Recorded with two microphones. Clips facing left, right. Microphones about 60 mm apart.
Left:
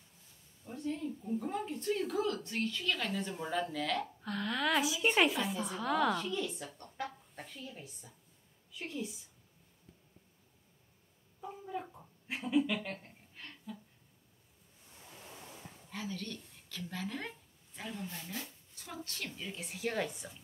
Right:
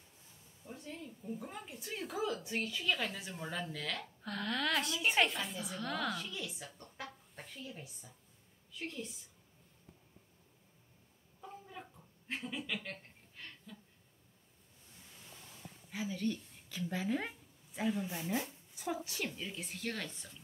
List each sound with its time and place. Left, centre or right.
0.7 s a woman's voice: centre
11.4 s a sound: centre
12.4 s speech: centre
13.7 s a sound: centre
15.9 s a woman's voice: centre
18.1 s a woman's voice: right; by 20.3 s centre